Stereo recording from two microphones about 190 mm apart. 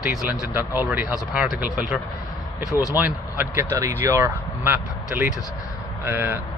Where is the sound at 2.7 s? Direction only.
20° left (ahead or behind).